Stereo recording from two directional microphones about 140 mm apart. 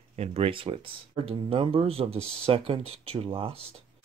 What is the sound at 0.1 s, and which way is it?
Speech, 50° right (ahead or behind).